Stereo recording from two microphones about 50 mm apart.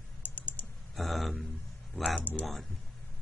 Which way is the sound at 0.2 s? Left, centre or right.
Left.